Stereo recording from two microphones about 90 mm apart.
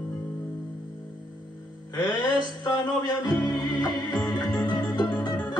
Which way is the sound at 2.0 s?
55° left (ahead or behind).